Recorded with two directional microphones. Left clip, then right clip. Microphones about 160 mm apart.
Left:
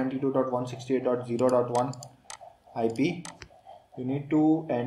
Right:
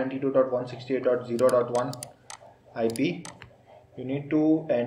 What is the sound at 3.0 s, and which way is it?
Speech, 50° left (ahead or behind).